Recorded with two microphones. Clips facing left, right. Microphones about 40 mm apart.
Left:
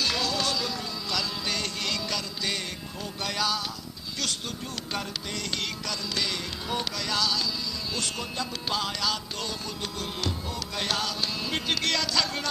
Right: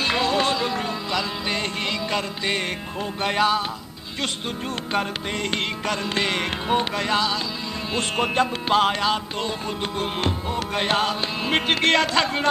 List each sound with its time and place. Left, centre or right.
0.0 s music: right
3.2 s heart sounds: right
5.5 s heart sounds: right